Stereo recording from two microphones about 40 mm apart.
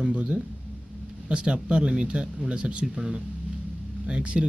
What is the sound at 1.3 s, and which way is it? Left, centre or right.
Speech, right.